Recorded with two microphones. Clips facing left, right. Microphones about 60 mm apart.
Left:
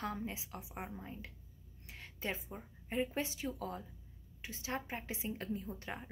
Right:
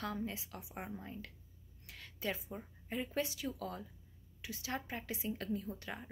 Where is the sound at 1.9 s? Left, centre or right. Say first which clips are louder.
Right 1 dB; left.